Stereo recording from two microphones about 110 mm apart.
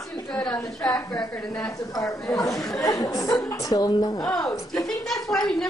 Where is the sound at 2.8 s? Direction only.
30° left (ahead or behind).